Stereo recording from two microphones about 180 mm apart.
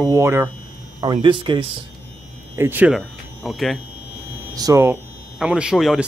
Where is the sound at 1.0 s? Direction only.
25° right (ahead or behind).